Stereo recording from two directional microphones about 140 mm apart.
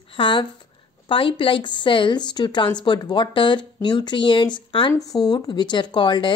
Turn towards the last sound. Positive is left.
turn(degrees=35)  # may be behind; listen again after turning